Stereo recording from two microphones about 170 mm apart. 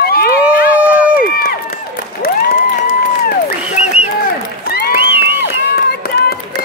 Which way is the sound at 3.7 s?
40° left (ahead or behind).